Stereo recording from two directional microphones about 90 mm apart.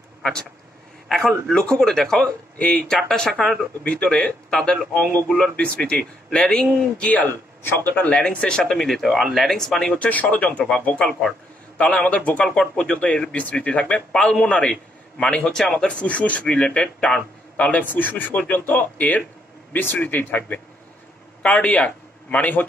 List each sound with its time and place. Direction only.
0.2 s speech: 5° left (ahead or behind)
1.0 s a sound: 5° left (ahead or behind)
1.5 s a man's voice: 10° left (ahead or behind)